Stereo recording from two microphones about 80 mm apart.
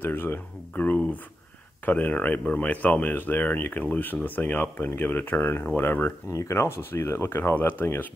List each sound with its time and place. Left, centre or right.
0.0 s speech: left
6.2 s speech: left